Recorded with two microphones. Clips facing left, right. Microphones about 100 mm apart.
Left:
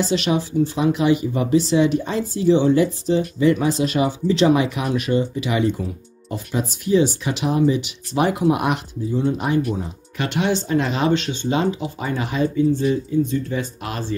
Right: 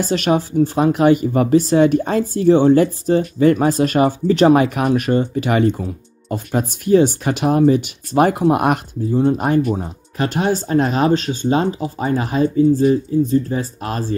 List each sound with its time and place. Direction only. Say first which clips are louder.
0.0 s speech: right 3 dB; 45° right (ahead or behind)